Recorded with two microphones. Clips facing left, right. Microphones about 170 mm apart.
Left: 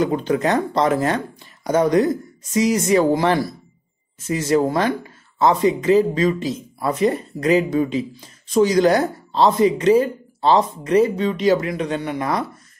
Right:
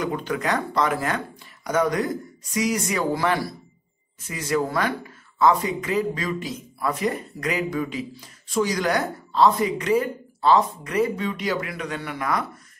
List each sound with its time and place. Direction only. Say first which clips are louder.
0.0 s speech: left 7 dB; 25° left (ahead or behind)